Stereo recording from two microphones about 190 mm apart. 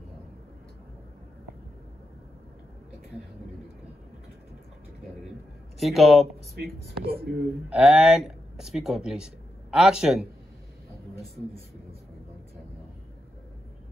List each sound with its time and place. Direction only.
5.8 s speech: centre (ahead or behind)
6.5 s speech: 55° right (ahead or behind)
7.7 s speech: 5° right (ahead or behind)